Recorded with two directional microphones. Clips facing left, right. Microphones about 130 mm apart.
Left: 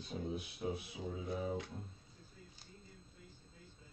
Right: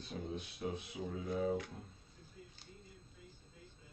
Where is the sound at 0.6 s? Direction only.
15° left (ahead or behind).